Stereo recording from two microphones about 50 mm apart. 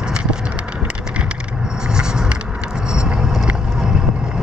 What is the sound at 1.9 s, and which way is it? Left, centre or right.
Vehicle, centre.